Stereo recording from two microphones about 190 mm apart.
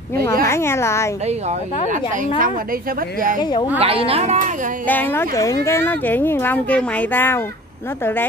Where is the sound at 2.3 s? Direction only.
45° right (ahead or behind).